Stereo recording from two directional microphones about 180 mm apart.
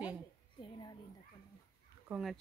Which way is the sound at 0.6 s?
25° left (ahead or behind).